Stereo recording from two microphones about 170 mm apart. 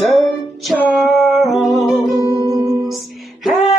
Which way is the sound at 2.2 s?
20° right (ahead or behind).